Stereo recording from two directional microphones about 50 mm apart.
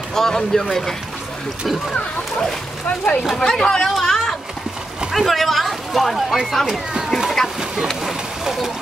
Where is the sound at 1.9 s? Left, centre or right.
Left.